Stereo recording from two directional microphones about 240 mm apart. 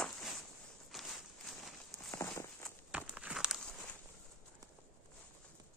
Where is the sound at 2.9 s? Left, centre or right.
Centre.